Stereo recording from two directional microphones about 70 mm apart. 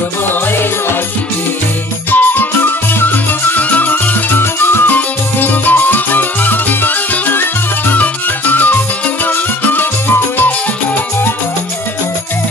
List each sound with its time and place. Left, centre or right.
0.3 s music: left
2.0 s music: left